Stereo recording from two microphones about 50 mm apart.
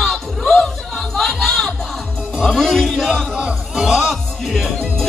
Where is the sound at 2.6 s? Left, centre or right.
Centre.